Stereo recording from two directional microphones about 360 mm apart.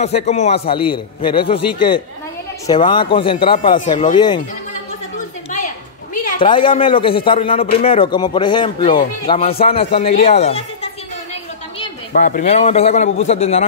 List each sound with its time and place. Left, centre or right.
0.0 s speech: centre
5.1 s a sound: left
6.2 s speech: centre
12.1 s a man's voice: left